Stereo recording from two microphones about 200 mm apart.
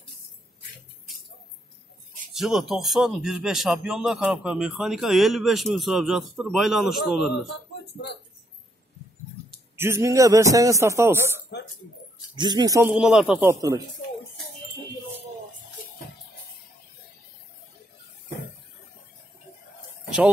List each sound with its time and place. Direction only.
2.3 s a man's voice: centre (ahead or behind)
9.8 s a man's voice: 15° right (ahead or behind)
12.4 s speech: 20° right (ahead or behind)
12.9 s a man's voice: 5° right (ahead or behind)